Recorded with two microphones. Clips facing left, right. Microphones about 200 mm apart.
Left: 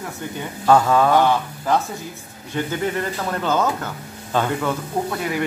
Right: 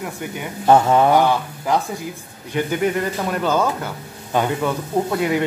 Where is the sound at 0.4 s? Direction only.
20° right (ahead or behind).